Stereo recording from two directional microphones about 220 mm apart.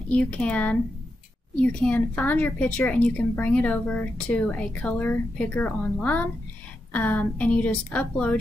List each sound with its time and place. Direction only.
0.1 s a woman's voice: 5° left (ahead or behind)